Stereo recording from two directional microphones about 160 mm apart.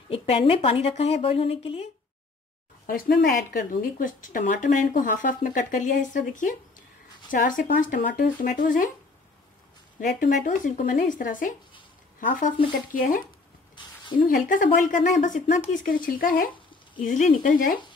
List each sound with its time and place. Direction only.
0.1 s a woman's voice: 35° left (ahead or behind)
2.9 s speech: 65° left (ahead or behind)
9.9 s speech: 55° left (ahead or behind)
14.2 s speech: 55° left (ahead or behind)